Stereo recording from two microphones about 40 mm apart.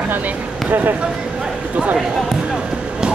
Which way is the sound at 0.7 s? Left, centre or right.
Right.